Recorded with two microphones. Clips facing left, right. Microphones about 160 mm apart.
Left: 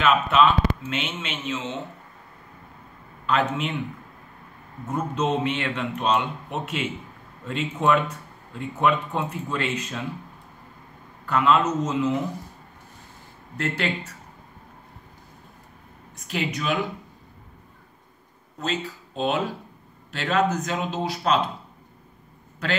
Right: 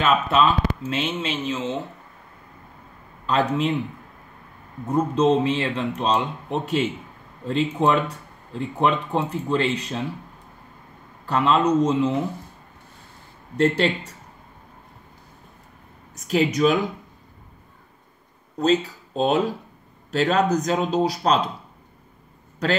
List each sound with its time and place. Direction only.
0.0 s speech: 35° right (ahead or behind)
3.3 s speech: 35° right (ahead or behind)
4.8 s speech: 30° right (ahead or behind)
11.2 s speech: 30° right (ahead or behind)
13.6 s speech: 30° right (ahead or behind)
16.3 s speech: 40° right (ahead or behind)
18.6 s a man's voice: 40° right (ahead or behind)